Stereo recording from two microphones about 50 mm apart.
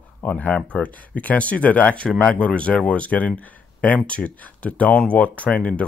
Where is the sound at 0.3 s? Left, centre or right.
Left.